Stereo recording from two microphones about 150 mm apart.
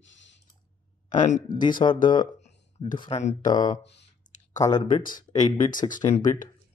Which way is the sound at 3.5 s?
25° left (ahead or behind).